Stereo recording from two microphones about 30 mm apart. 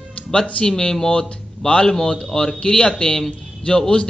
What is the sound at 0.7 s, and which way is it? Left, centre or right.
A man's voice, left.